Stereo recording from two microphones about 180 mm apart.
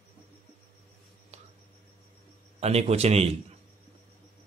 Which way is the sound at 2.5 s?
35° right (ahead or behind).